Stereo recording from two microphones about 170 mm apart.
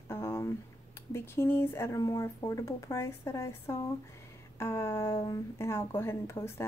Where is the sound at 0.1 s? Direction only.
15° left (ahead or behind).